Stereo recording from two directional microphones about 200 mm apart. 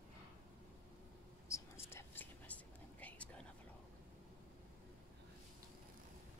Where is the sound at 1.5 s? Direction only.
15° left (ahead or behind).